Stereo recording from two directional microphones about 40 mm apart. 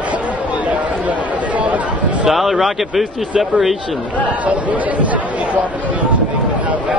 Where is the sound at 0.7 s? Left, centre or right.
Right.